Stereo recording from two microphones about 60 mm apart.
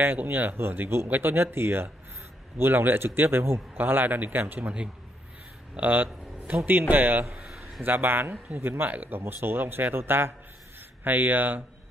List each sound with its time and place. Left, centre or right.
0.0 s a man's voice: right
3.7 s a man's voice: right
4.6 s a man's voice: centre
7.4 s a sound: centre
7.8 s a man's voice: right